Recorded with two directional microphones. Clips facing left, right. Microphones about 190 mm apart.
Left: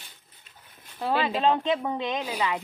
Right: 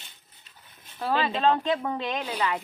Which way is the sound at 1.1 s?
10° left (ahead or behind).